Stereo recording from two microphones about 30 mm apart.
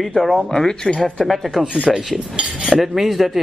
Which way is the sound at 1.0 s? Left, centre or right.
Left.